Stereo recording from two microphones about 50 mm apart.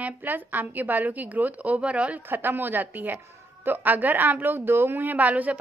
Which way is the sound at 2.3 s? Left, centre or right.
Right.